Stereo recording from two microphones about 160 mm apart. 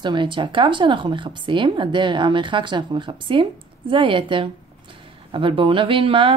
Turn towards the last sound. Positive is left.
turn(degrees=-35)  # may be behind; listen again after turning